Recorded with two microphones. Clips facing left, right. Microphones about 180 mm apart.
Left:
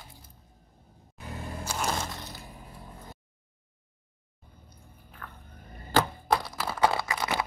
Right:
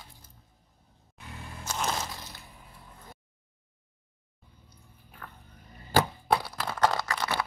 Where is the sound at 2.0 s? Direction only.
Centre (ahead or behind).